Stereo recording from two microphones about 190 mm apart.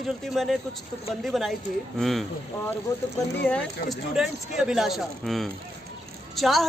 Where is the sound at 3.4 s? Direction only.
5° left (ahead or behind).